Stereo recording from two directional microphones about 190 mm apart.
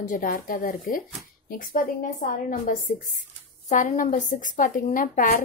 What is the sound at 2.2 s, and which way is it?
A woman's voice, 40° left (ahead or behind).